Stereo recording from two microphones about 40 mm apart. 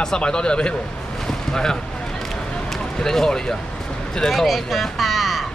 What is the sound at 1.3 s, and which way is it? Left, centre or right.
Boat, centre.